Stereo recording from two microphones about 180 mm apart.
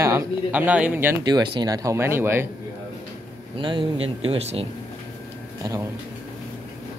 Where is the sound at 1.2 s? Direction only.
20° right (ahead or behind).